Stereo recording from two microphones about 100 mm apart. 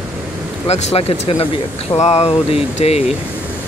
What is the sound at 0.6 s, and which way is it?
Speech, 90° left.